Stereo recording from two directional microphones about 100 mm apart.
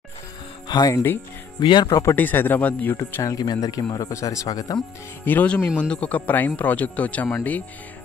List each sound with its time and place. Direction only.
0.7 s speech: 40° left (ahead or behind)
1.6 s speech: 50° left (ahead or behind)
2.1 s speech: 20° left (ahead or behind)
3.3 s speech: 40° left (ahead or behind)
5.2 s speech: 15° left (ahead or behind)